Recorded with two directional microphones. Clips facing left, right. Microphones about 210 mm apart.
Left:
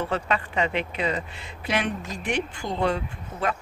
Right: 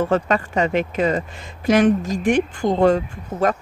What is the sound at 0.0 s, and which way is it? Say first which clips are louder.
Speech: right 8 dB; 45° right (ahead or behind).